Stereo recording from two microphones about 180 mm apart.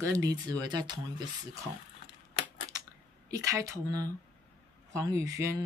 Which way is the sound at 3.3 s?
20° right (ahead or behind).